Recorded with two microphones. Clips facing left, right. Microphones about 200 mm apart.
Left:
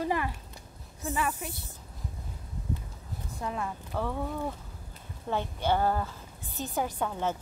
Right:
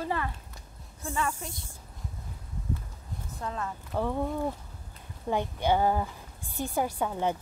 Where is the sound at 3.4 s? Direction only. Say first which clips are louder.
Left 1 dB; 15° left (ahead or behind).